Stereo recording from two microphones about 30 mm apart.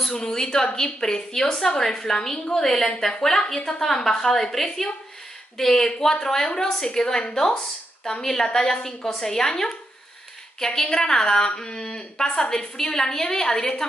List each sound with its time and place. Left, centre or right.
0.2 s a woman's voice: centre
10.6 s a woman's voice: centre; by 12.1 s left
12.2 s a woman's voice: left